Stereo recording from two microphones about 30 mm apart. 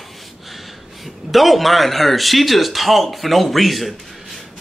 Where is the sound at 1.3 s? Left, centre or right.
Centre.